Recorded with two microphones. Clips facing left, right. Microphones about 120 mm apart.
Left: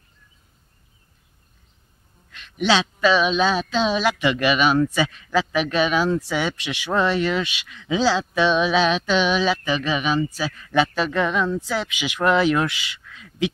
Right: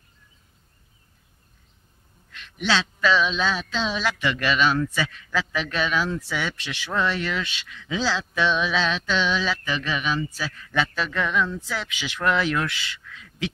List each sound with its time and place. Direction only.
2.3 s speech: 15° left (ahead or behind)